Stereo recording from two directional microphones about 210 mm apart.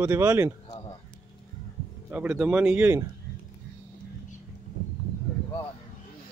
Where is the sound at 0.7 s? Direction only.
20° left (ahead or behind).